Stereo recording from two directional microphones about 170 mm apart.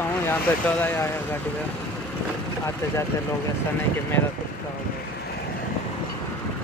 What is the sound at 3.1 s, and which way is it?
Speech, 15° left (ahead or behind).